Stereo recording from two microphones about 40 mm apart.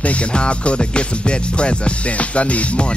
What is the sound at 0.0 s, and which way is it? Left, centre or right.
Music, left.